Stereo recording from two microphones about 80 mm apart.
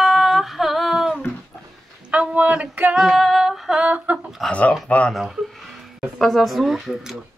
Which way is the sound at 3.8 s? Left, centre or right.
Centre.